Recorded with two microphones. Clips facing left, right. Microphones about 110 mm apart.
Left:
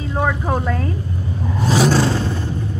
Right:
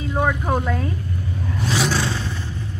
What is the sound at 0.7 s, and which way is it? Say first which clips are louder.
Speech: left 2 dB; centre (ahead or behind).